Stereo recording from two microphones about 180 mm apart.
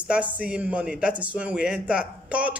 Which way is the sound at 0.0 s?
5° right (ahead or behind).